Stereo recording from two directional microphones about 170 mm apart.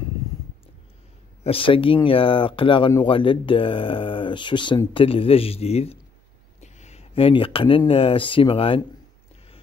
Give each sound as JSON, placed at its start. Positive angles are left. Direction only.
{"t": 1.4, "sound": "speech", "side_deg": 30}